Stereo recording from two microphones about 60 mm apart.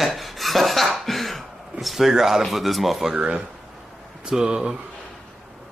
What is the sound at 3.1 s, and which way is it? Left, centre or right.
Speech, centre.